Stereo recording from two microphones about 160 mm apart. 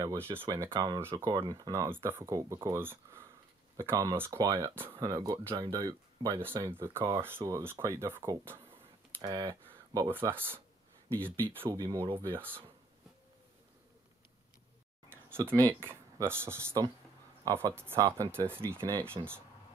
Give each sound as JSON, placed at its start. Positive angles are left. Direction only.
{"t": 0.0, "sound": "speech", "side_deg": -20}
{"t": 9.2, "sound": "speech", "side_deg": -25}
{"t": 11.7, "sound": "speech", "side_deg": -25}
{"t": 15.0, "sound": "speech", "side_deg": -15}
{"t": 19.2, "sound": "speech", "side_deg": -30}